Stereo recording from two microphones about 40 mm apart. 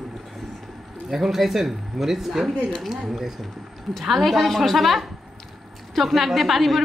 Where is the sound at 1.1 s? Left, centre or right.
Centre.